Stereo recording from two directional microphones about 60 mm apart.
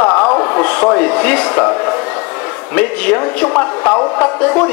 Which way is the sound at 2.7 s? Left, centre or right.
Left.